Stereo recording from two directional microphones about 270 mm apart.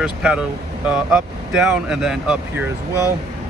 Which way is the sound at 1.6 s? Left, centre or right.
Centre.